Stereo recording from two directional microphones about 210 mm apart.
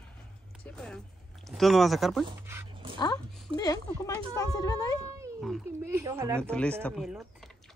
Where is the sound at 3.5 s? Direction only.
15° left (ahead or behind).